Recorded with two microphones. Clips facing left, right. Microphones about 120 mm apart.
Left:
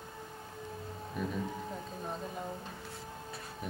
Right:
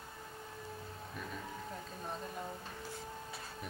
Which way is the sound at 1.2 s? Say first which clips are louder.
Left 10 dB; centre (ahead or behind).